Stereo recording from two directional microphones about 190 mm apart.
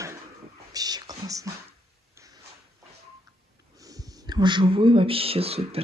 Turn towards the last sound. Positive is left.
turn(degrees=-30)  # may be behind; listen again after turning